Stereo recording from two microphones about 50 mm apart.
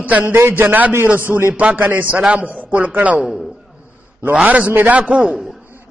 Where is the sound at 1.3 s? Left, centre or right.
Right.